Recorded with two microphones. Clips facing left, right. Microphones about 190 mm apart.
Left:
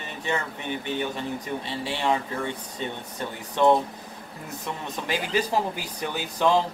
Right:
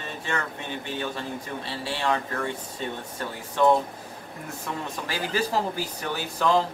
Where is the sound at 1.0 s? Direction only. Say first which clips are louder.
Left 2 dB; 15° left (ahead or behind).